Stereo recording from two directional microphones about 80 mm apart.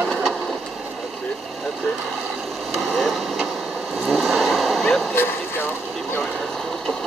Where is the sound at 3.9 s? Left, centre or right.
Centre.